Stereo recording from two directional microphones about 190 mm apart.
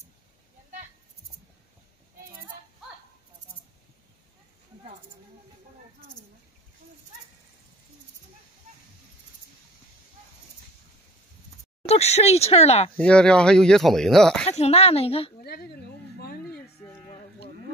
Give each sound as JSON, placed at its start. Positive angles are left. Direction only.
{"t": 11.9, "sound": "speech", "side_deg": 35}
{"t": 12.9, "sound": "speech", "side_deg": 5}
{"t": 14.5, "sound": "speech", "side_deg": 35}
{"t": 15.4, "sound": "a sound", "side_deg": 55}